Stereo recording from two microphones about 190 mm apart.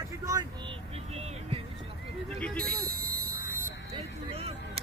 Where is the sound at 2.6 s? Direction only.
50° right (ahead or behind).